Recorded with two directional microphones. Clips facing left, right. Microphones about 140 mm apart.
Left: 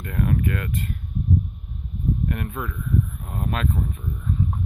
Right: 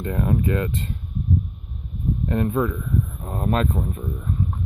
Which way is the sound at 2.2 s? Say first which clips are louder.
Right 7 dB; 25° right (ahead or behind).